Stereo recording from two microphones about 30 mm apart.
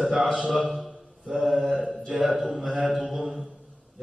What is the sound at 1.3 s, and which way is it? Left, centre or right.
Mantra, centre.